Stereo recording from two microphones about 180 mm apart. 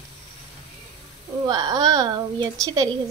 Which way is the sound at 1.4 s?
20° right (ahead or behind).